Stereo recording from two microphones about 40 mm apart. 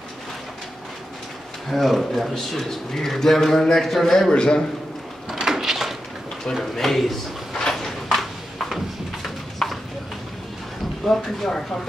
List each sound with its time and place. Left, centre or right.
1.7 s a man's voice: centre
4.3 s a man's voice: left
5.3 s drawer open or close: centre
6.5 s a man's voice: centre
7.6 s a sound: centre
9.6 s a sound: centre
11.1 s a man's voice: centre